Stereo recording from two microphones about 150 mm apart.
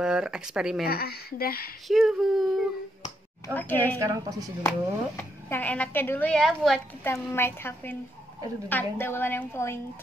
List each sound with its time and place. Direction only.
0.0 s speech: 5° right (ahead or behind)
0.8 s speech: 90° left
1.9 s a sound: centre (ahead or behind)
3.5 s a woman's voice: 10° left (ahead or behind)
4.0 s speech: 20° right (ahead or behind)
4.6 s a woman's voice: 15° left (ahead or behind)
7.0 s a woman's voice: 15° left (ahead or behind)